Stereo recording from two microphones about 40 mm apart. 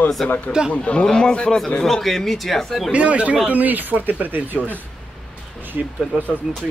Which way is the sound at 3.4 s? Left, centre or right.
Right.